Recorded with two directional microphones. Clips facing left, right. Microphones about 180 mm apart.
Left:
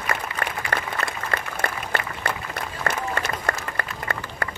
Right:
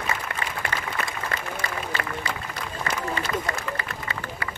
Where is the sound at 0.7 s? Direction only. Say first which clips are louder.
Left 2 dB; 60° left (ahead or behind).